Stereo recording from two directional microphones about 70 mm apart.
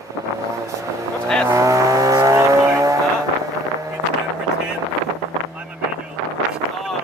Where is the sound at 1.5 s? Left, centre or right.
Right.